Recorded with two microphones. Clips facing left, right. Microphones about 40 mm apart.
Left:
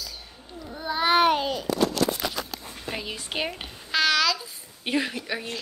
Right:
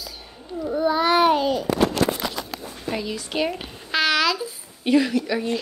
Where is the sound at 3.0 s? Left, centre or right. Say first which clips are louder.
Right 5 dB; left.